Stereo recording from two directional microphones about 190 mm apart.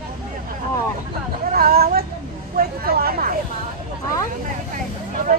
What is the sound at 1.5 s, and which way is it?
Vehicle, 55° right (ahead or behind).